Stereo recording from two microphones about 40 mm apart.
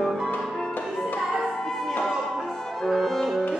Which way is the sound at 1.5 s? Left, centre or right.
Centre.